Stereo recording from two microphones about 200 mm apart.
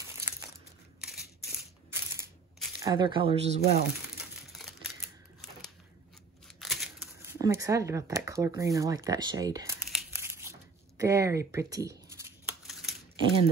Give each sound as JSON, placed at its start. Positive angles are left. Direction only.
{"t": 2.8, "sound": "speech", "side_deg": -20}
{"t": 4.5, "sound": "typewriter", "side_deg": 0}
{"t": 6.4, "sound": "a sound", "side_deg": 0}
{"t": 7.2, "sound": "speech", "side_deg": -15}
{"t": 10.1, "sound": "crumpling", "side_deg": -10}
{"t": 11.0, "sound": "speech", "side_deg": -15}
{"t": 12.6, "sound": "typing", "side_deg": 0}
{"t": 13.1, "sound": "speech", "side_deg": -25}